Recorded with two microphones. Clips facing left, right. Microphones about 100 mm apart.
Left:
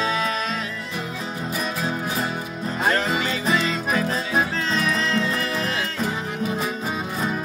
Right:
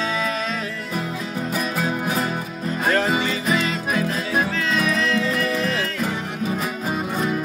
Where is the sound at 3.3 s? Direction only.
35° left (ahead or behind).